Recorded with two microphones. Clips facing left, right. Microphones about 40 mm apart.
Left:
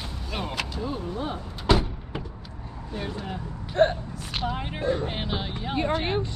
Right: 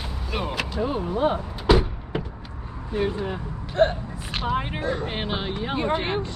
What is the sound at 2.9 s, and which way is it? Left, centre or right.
Speech, centre.